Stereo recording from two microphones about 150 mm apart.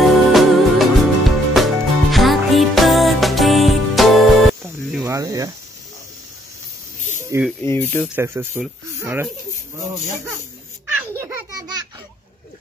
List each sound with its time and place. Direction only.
0.0 s music: centre (ahead or behind)
5.0 s snake: 20° right (ahead or behind)
7.0 s snake: 55° left (ahead or behind)
7.6 s speech: 15° left (ahead or behind)
8.2 s speech: 15° right (ahead or behind)
11.1 s baby laughter: 20° right (ahead or behind)